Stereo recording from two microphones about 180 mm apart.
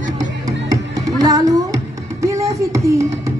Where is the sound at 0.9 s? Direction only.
20° right (ahead or behind).